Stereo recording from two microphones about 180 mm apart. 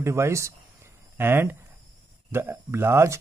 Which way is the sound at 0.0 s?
15° right (ahead or behind).